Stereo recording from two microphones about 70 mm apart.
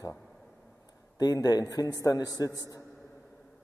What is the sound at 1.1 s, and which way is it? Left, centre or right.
A man's voice, left.